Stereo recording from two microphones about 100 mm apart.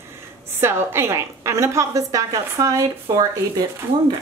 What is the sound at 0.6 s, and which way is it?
A woman's voice, 25° right (ahead or behind).